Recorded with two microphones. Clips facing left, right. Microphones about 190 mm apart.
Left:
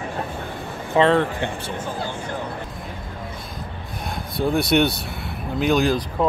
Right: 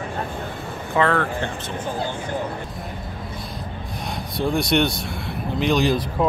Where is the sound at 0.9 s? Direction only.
20° left (ahead or behind).